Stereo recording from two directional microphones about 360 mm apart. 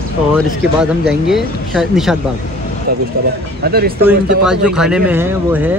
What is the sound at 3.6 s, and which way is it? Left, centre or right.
Speech, right.